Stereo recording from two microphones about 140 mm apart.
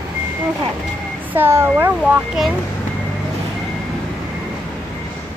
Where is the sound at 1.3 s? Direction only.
15° right (ahead or behind).